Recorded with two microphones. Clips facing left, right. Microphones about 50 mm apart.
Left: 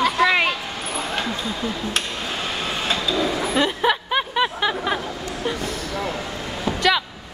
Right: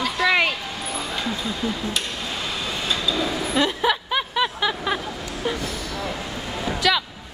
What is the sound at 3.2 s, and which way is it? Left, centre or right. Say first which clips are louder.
Vehicle: left 2 dB; centre.